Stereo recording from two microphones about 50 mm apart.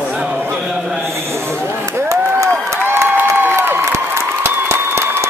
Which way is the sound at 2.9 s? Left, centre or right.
Right.